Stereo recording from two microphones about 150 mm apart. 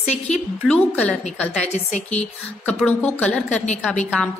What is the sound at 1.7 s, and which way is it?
Speech, 50° left (ahead or behind).